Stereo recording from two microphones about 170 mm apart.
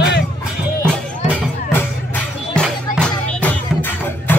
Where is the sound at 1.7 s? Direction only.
10° left (ahead or behind).